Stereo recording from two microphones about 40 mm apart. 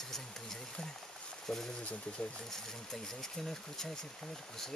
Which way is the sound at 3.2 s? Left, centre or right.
Centre.